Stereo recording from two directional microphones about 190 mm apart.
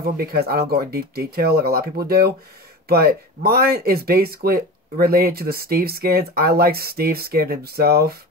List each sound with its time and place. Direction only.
0.0 s speech: 55° right (ahead or behind)